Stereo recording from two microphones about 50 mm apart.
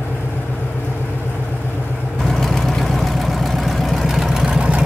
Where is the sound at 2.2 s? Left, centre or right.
Centre.